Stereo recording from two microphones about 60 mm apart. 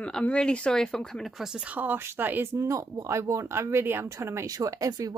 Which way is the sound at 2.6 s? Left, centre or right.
Right.